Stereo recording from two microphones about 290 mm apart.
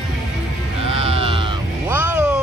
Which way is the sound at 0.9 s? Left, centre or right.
Centre.